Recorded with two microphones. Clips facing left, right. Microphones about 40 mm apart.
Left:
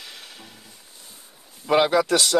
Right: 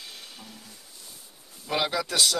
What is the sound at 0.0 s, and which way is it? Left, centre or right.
Music, left.